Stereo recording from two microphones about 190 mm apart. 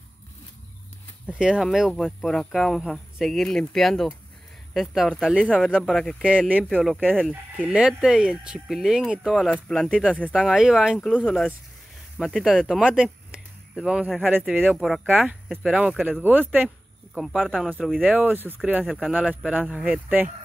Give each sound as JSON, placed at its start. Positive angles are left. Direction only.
{"t": 1.2, "sound": "speech", "side_deg": -5}
{"t": 7.5, "sound": "speech", "side_deg": -10}